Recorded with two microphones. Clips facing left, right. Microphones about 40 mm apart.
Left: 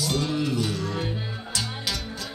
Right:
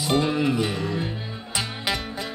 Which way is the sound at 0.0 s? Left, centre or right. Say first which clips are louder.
Right 4 dB; right.